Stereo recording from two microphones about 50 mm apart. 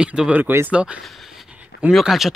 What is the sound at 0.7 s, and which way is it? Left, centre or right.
Speech, right.